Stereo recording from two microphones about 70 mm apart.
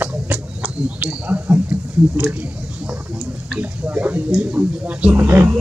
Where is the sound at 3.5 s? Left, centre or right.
Right.